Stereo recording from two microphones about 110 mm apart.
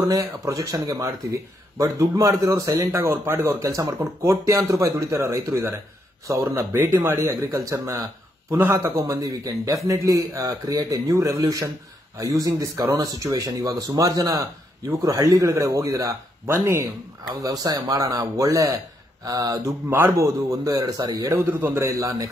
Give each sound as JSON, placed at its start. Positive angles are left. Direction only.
{"t": 0.1, "sound": "speech", "side_deg": -30}
{"t": 7.2, "sound": "speech", "side_deg": -30}
{"t": 8.5, "sound": "speech", "side_deg": -20}
{"t": 8.7, "sound": "speech", "side_deg": -30}
{"t": 21.5, "sound": "speech", "side_deg": -20}